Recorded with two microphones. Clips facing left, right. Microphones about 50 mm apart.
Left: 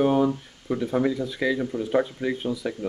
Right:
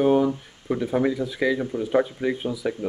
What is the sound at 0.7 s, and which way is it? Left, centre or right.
Speech, centre.